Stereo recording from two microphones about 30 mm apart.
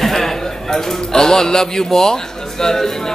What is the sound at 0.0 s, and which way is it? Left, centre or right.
A man's voice, centre.